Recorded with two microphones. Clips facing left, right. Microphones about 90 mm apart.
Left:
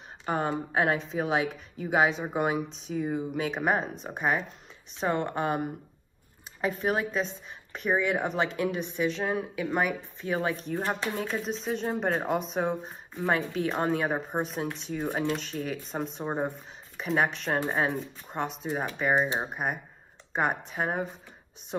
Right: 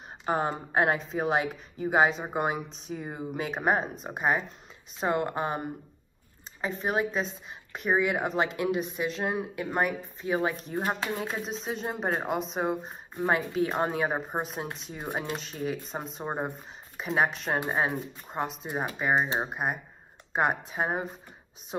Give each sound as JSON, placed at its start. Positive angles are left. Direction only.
{"t": 0.2, "sound": "speech", "side_deg": 0}
{"t": 6.8, "sound": "speech", "side_deg": 0}